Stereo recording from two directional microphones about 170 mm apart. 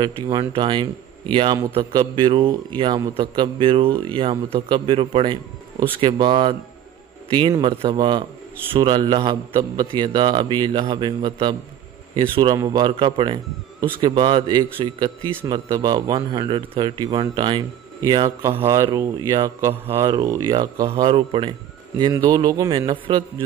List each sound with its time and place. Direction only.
0.0 s a man's voice: 25° right (ahead or behind)
20.9 s a man's voice: 35° right (ahead or behind)